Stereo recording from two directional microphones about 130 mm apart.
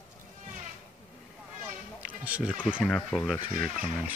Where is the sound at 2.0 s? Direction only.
10° right (ahead or behind).